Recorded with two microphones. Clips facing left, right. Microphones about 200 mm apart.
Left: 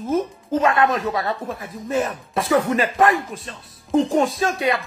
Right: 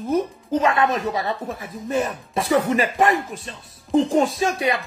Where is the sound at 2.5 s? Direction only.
25° right (ahead or behind).